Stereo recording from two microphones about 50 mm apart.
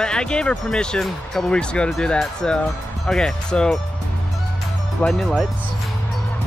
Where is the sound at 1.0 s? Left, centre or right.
Centre.